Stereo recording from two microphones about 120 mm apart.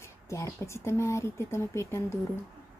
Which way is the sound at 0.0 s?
25° left (ahead or behind).